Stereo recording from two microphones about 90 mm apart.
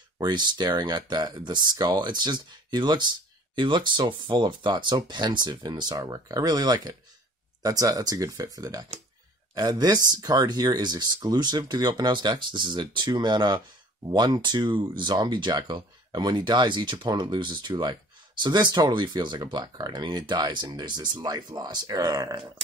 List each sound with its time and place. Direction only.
0.2 s speech: 55° right (ahead or behind)